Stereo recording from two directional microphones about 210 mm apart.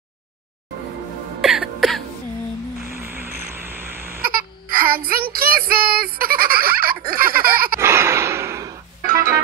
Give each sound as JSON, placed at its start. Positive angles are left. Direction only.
{"t": 1.4, "sound": "music", "side_deg": 0}
{"t": 2.9, "sound": "a sound", "side_deg": -10}
{"t": 4.2, "sound": "child singing", "side_deg": -45}
{"t": 7.8, "sound": "gasp", "side_deg": -10}
{"t": 9.0, "sound": "music", "side_deg": -45}